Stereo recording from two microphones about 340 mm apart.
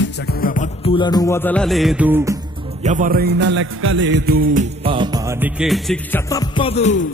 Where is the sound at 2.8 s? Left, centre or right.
Right.